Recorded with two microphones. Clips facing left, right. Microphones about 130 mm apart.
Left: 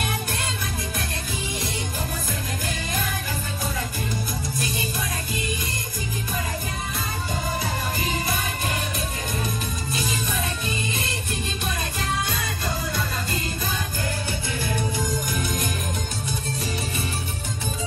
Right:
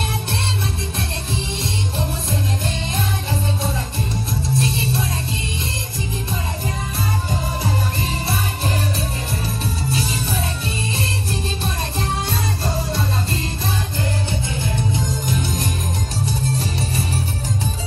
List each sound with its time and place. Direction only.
4.6 s music: 30° right (ahead or behind)
9.8 s music: 30° right (ahead or behind)
12.3 s music: 30° right (ahead or behind)
15.2 s music: 30° right (ahead or behind)